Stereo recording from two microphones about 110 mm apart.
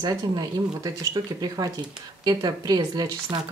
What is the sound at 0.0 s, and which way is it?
Speech, 40° right (ahead or behind).